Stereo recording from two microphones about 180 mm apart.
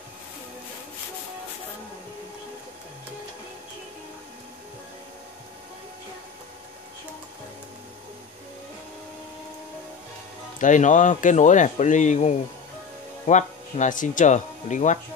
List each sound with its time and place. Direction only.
10.6 s speech: 45° left (ahead or behind)